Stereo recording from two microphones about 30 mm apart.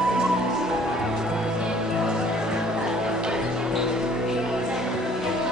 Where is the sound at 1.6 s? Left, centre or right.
Right.